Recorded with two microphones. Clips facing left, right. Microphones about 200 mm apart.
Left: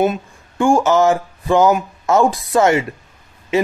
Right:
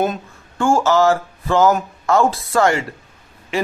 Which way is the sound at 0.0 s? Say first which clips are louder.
Left 3 dB; 10° left (ahead or behind).